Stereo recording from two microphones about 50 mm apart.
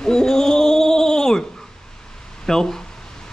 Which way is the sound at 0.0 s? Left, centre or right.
Centre.